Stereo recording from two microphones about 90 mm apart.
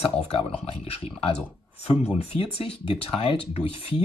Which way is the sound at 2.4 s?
90° left.